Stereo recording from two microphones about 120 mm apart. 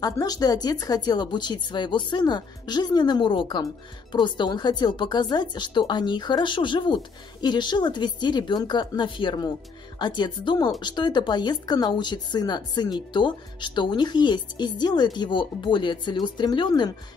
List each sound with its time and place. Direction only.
0.0 s speech: 35° left (ahead or behind)